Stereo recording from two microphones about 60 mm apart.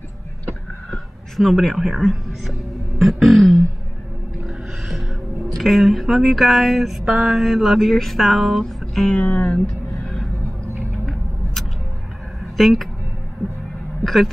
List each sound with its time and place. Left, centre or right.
1.3 s music: centre
7.1 s mantra: centre
7.3 s music: centre
9.1 s speech: left
12.5 s speech: centre
14.0 s music: centre